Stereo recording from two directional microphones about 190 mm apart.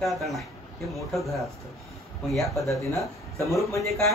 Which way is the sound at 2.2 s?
Centre (ahead or behind).